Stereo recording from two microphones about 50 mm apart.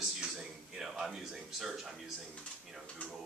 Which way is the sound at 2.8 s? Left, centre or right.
Left.